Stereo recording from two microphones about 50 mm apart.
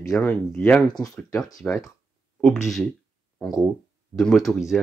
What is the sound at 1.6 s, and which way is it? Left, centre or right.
Speech, left.